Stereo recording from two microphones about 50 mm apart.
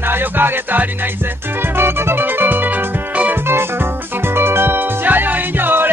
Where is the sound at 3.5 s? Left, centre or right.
Right.